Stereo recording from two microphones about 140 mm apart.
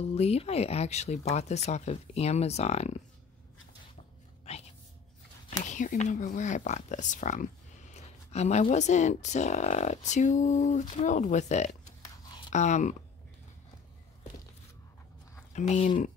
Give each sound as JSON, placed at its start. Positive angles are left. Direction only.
{"t": 0.0, "sound": "speech", "side_deg": 50}
{"t": 5.7, "sound": "speech", "side_deg": 60}
{"t": 15.5, "sound": "speech", "side_deg": 50}